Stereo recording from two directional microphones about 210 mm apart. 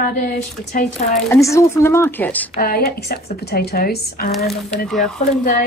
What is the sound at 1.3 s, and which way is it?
Speech, 15° left (ahead or behind).